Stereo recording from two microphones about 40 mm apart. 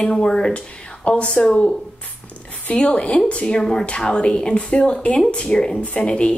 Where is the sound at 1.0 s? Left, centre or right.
Left.